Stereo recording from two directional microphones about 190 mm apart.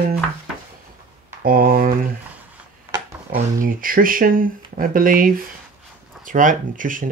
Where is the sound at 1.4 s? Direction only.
50° right (ahead or behind).